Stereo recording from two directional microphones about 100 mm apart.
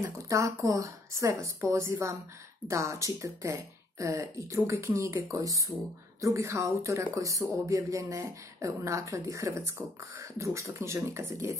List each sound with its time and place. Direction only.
0.3 s speech: 30° right (ahead or behind)